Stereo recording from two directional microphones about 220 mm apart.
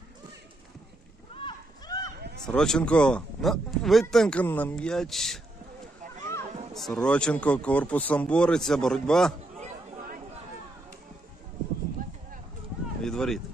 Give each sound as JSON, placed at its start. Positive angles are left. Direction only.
{"t": 1.3, "sound": "a sound", "side_deg": 25}
{"t": 2.4, "sound": "speech", "side_deg": 0}
{"t": 6.7, "sound": "speech", "side_deg": 0}
{"t": 9.6, "sound": "chatter", "side_deg": -35}
{"t": 13.0, "sound": "speech", "side_deg": 5}